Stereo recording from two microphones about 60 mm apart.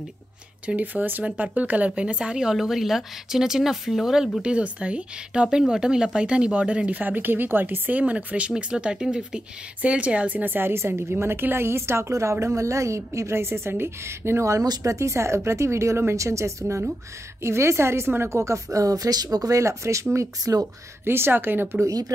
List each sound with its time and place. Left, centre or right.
0.7 s a woman's voice: right; by 4.3 s centre
4.4 s a woman's voice: centre
9.8 s a woman's voice: right
20.2 s speech: right
21.0 s a woman's voice: right
21.8 s speech: right